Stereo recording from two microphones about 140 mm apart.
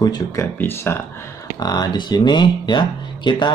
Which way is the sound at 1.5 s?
30° left (ahead or behind).